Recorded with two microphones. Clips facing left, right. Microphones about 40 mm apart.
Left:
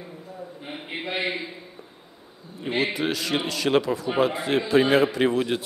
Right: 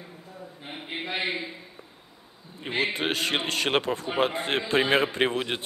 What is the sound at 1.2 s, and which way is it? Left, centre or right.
Speech, centre.